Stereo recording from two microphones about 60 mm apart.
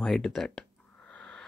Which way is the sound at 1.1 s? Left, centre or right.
Centre.